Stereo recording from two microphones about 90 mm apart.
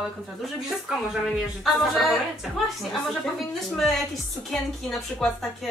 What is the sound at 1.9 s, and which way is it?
A woman's voice, centre (ahead or behind).